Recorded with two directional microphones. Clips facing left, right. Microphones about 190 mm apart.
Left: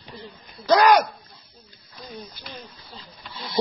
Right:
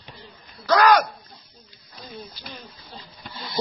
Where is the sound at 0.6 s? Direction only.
15° left (ahead or behind).